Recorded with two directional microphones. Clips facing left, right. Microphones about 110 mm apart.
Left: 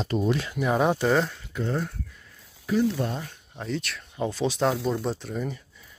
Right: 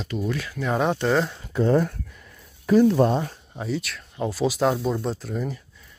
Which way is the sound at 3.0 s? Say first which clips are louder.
Right 9 dB; 35° right (ahead or behind).